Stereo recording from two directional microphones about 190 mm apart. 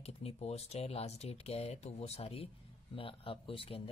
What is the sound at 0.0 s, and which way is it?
Speech, 30° left (ahead or behind).